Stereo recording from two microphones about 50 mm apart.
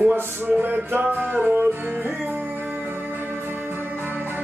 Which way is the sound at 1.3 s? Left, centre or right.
Right.